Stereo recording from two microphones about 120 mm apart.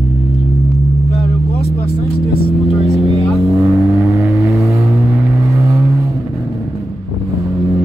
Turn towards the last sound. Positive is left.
turn(degrees=-25)  # may be behind; listen again after turning